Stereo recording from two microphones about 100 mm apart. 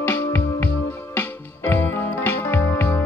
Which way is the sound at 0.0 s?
20° left (ahead or behind).